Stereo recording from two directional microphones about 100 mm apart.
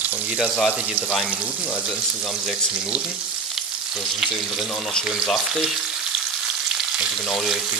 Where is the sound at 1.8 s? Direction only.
5° right (ahead or behind).